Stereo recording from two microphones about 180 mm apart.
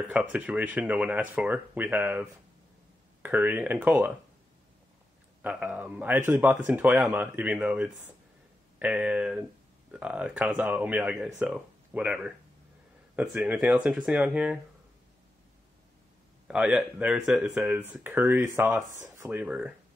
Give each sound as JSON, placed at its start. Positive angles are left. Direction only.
{"t": 0.1, "sound": "speech", "side_deg": -5}
{"t": 5.4, "sound": "speech", "side_deg": -5}
{"t": 16.4, "sound": "speech", "side_deg": -5}